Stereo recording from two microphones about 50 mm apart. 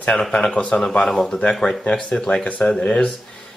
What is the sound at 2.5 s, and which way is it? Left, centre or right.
Speech, left.